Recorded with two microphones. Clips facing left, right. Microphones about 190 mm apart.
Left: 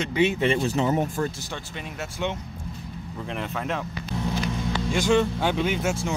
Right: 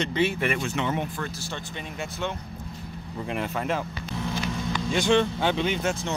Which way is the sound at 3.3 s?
Centre (ahead or behind).